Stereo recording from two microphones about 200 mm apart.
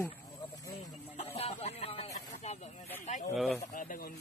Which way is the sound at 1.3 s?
30° left (ahead or behind).